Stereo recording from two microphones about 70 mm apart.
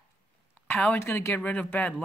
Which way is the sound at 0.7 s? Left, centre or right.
Centre.